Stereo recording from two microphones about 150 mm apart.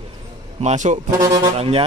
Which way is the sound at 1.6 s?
40° right (ahead or behind).